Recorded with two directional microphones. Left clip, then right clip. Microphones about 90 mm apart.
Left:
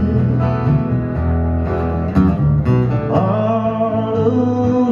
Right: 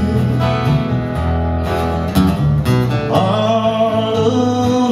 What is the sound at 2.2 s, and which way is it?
Music, 20° right (ahead or behind).